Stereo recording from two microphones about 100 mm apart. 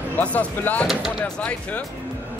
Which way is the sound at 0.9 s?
5° right (ahead or behind).